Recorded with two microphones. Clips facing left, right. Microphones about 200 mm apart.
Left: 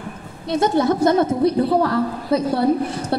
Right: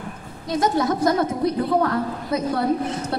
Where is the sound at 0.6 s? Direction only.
30° left (ahead or behind).